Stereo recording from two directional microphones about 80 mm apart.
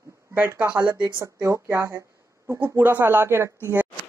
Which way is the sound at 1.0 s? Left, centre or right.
Right.